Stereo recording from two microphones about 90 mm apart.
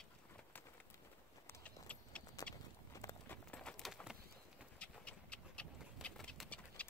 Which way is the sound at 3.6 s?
Centre (ahead or behind).